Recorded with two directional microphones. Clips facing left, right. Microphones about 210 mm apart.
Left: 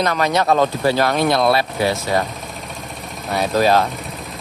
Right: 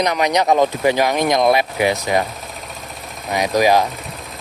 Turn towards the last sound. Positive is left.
turn(degrees=-15)  # may be behind; listen again after turning